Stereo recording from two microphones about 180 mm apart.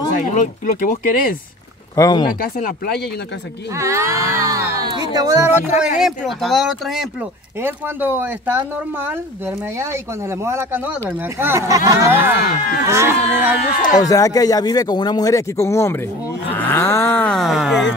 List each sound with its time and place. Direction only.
0.3 s speech: 45° left (ahead or behind)
2.0 s speech: 20° left (ahead or behind)
2.2 s speech: 50° left (ahead or behind)
3.7 s speech: 15° right (ahead or behind)
5.8 s speech: centre (ahead or behind)
13.6 s speech: 40° left (ahead or behind)
14.0 s speech: 20° left (ahead or behind); by 17.8 s centre (ahead or behind)